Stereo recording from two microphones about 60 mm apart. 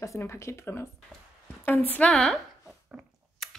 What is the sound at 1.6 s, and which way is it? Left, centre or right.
Speech, left.